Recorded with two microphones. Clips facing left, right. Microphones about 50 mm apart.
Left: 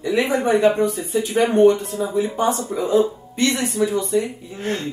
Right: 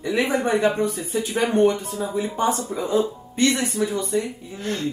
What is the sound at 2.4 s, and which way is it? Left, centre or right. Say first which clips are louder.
Speech: left 2 dB; left.